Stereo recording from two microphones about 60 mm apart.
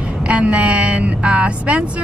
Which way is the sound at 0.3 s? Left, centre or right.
Right.